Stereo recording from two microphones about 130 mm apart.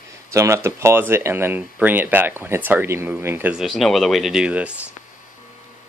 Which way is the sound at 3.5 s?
Centre (ahead or behind).